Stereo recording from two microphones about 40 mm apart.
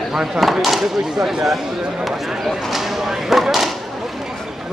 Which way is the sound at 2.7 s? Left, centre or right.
Centre.